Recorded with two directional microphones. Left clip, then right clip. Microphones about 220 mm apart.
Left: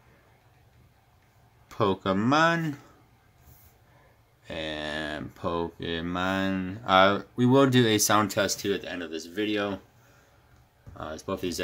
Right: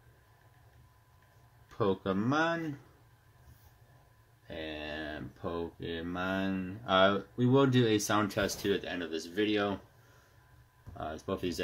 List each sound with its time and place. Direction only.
1.7 s speech: 30° left (ahead or behind)
4.5 s speech: 25° left (ahead or behind); by 9.8 s 5° left (ahead or behind)
11.0 s speech: 5° left (ahead or behind)